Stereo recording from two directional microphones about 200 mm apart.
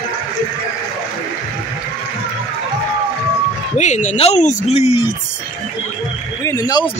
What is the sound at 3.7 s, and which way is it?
Speech, 35° left (ahead or behind).